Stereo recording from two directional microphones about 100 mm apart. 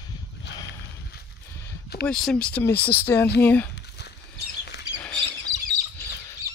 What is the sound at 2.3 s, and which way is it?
Speech, 15° left (ahead or behind).